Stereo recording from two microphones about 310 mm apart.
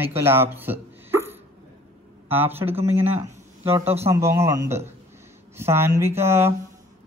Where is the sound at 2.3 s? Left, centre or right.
Centre.